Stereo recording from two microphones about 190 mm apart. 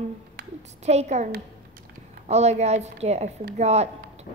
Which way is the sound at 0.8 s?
35° right (ahead or behind).